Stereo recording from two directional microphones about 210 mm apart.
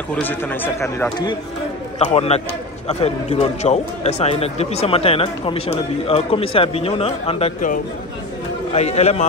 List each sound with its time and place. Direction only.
0.1 s speech: 10° left (ahead or behind)
2.0 s a man's voice: 30° left (ahead or behind)